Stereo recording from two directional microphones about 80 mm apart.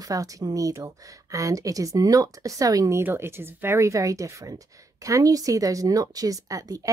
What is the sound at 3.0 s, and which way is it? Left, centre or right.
Speech, right.